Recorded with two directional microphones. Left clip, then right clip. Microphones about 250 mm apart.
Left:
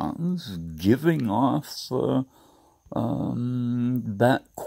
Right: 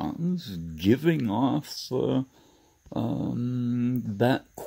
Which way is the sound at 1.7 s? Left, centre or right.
Centre.